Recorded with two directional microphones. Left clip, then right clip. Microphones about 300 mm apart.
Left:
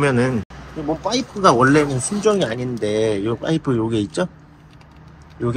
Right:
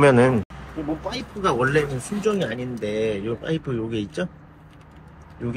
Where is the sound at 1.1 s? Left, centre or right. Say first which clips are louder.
Left 9 dB; centre.